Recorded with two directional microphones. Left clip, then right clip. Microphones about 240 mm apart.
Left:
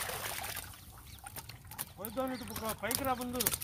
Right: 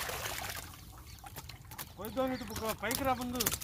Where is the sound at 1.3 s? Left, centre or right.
Centre.